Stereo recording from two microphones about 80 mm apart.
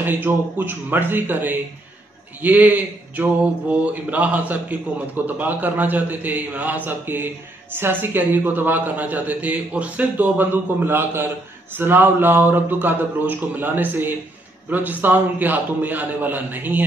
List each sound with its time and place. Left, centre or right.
0.0 s a man's voice: right